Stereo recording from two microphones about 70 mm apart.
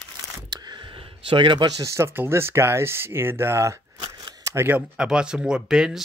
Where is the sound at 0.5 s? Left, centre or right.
Right.